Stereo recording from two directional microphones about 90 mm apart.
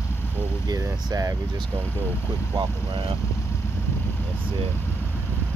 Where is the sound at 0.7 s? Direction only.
40° right (ahead or behind).